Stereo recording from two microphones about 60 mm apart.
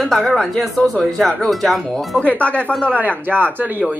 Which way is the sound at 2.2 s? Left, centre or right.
Left.